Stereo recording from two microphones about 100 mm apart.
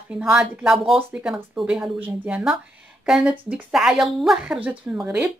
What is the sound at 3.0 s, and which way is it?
Speech, 5° right (ahead or behind).